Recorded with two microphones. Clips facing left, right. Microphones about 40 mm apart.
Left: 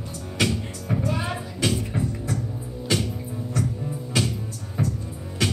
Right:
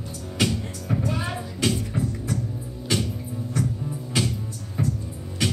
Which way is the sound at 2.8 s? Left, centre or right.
Centre.